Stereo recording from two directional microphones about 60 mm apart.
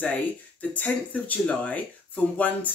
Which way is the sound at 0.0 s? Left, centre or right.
Left.